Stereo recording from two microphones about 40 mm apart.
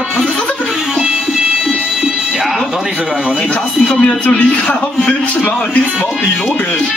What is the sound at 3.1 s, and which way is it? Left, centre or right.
Speech, centre.